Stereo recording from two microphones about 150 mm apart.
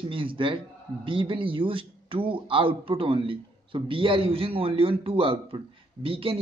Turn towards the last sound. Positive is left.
turn(degrees=-35)  # may be behind; listen again after turning